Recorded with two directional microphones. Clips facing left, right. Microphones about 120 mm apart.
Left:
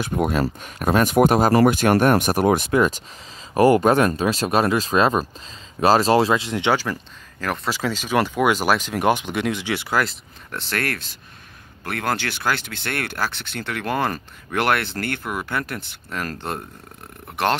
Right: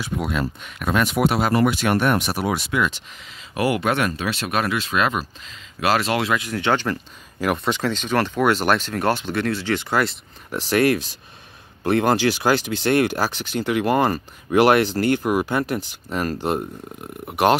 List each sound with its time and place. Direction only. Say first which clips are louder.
0.0 s speech: left 4 dB; 45° left (ahead or behind); by 6.7 s 25° left (ahead or behind)
6.7 s speech: right 1 dB; 5° left (ahead or behind)
7.3 s speech: right 4 dB; 10° right (ahead or behind)
7.6 s speech: right 2 dB; 5° left (ahead or behind)
10.7 s speech: right 9 dB; 15° right (ahead or behind)